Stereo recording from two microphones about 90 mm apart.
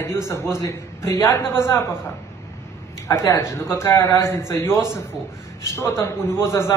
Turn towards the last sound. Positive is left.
turn(degrees=35)  # may be behind; listen again after turning